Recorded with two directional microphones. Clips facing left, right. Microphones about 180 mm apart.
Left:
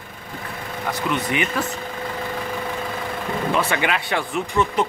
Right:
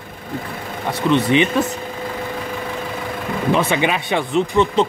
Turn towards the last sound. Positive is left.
turn(degrees=-25)  # may be behind; listen again after turning